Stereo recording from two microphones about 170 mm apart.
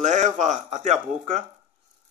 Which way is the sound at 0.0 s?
45° right (ahead or behind).